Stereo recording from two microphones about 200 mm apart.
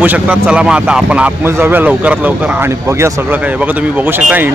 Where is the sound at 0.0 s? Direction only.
10° right (ahead or behind).